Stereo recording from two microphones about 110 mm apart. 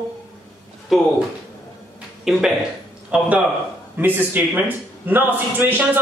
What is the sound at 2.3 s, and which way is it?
Speech, 5° right (ahead or behind).